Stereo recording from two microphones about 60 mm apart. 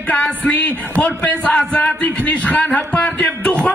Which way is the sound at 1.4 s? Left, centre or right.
Centre.